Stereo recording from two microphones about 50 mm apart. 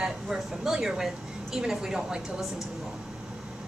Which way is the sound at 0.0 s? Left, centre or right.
Centre.